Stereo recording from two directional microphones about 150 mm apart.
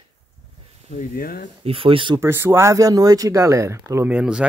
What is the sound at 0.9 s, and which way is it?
Speech, 75° left (ahead or behind).